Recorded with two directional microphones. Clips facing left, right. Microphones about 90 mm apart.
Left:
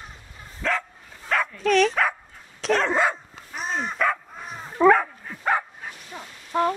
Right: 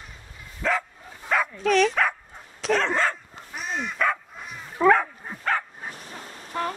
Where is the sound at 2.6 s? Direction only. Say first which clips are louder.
Left 1 dB; centre (ahead or behind).